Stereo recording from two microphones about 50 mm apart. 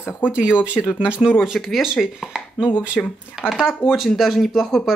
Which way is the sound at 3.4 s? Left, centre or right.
Centre.